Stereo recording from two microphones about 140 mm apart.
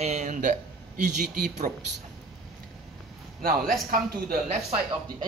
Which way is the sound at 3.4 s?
90° right.